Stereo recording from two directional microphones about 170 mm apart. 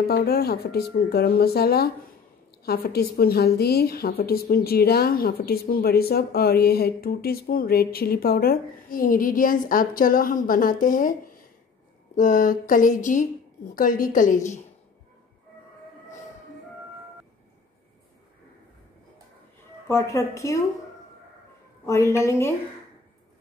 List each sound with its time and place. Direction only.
0.1 s a woman's voice: 65° left (ahead or behind)
12.2 s speech: 50° left (ahead or behind)
19.9 s a woman's voice: 15° left (ahead or behind)
21.8 s a woman's voice: 15° left (ahead or behind)